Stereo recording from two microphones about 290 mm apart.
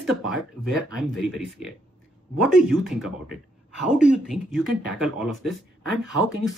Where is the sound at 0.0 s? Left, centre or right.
Centre.